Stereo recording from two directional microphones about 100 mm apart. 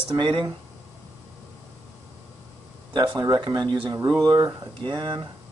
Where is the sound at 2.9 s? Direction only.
50° right (ahead or behind).